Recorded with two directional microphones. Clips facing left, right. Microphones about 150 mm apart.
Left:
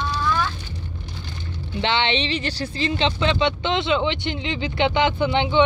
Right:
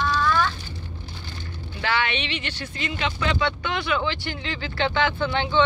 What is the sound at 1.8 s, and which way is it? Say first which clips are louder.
Speech: left 4 dB; 25° left (ahead or behind).